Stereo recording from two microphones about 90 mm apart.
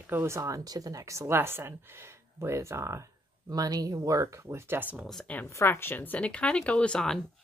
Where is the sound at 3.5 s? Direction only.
45° right (ahead or behind); by 5.1 s 20° right (ahead or behind).